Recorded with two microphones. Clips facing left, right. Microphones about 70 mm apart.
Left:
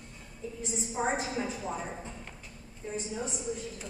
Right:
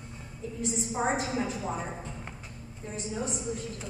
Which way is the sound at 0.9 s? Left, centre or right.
Centre.